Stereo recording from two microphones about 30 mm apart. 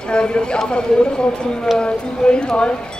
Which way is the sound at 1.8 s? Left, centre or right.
Left.